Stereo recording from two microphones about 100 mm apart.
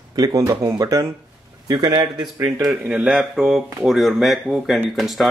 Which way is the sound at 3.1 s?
5° right (ahead or behind).